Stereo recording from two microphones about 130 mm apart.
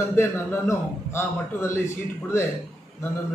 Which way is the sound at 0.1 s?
20° left (ahead or behind).